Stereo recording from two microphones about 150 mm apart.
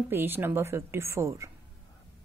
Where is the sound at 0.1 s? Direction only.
15° right (ahead or behind).